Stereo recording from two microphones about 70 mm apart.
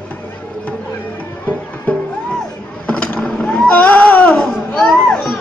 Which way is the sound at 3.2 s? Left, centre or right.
Centre.